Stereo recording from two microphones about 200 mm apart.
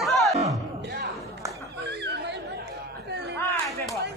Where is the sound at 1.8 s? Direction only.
55° right (ahead or behind).